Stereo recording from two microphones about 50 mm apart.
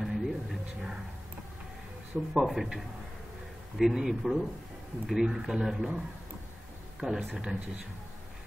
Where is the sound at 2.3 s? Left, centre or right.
Centre.